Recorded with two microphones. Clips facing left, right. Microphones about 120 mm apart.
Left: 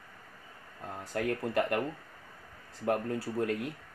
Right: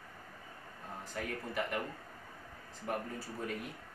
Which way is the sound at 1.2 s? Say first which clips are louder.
Left 8 dB; 65° left (ahead or behind).